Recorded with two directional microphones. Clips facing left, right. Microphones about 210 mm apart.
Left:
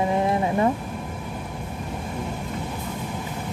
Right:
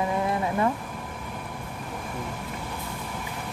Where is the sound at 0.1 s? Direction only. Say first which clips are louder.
Left 4 dB; 25° left (ahead or behind).